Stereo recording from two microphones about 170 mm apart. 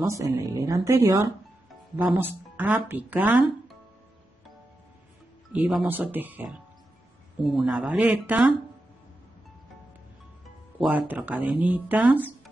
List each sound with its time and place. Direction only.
0.0 s speech: 15° right (ahead or behind)
5.5 s speech: 10° right (ahead or behind)
10.9 s speech: 10° right (ahead or behind)